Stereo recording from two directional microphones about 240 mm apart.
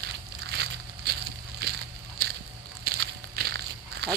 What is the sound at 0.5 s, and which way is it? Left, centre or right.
Crushing, right.